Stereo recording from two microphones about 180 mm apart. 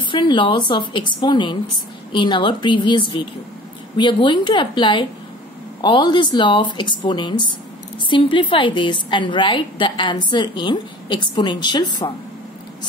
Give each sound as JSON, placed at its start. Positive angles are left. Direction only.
{"t": 0.1, "sound": "a woman's voice", "side_deg": 25}